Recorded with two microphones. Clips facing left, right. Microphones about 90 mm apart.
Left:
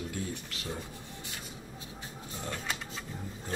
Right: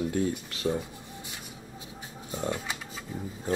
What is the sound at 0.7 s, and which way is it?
Speech, 25° right (ahead or behind).